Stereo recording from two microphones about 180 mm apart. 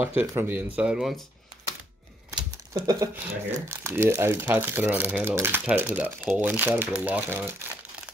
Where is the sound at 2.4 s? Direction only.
20° right (ahead or behind).